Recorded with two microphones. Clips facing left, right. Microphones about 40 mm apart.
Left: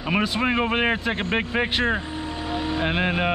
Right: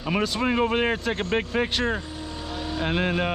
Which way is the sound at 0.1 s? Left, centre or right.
Centre.